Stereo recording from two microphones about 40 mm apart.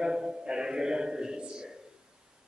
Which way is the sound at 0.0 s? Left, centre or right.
Centre.